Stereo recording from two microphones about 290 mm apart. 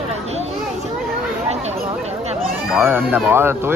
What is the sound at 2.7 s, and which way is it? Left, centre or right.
Speech, centre.